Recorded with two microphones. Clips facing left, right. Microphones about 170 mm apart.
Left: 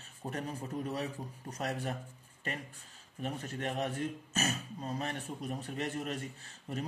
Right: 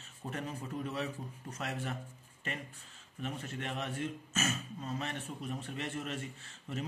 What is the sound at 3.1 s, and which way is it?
Speech, 40° left (ahead or behind).